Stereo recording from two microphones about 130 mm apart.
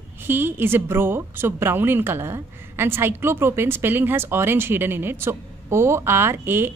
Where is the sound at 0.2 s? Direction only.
15° right (ahead or behind).